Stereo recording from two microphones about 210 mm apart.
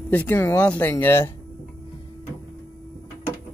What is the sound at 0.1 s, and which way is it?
Speech, 10° left (ahead or behind).